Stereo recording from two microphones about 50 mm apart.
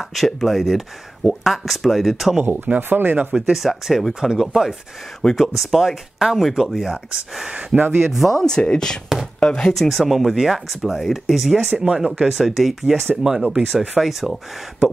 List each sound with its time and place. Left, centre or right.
0.0 s speech: centre
2.4 s speech: right
3.5 s speech: centre
5.2 s speech: centre
5.6 s speech: centre
7.8 s speech: right
8.1 s speech: centre
8.4 s speech: centre
9.8 s speech: centre